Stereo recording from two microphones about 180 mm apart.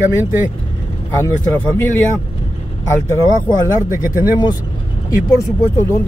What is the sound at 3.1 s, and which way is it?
Speech, 15° left (ahead or behind).